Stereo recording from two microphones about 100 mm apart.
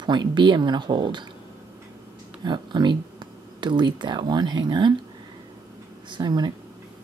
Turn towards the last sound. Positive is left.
turn(degrees=-45)  # may be behind; listen again after turning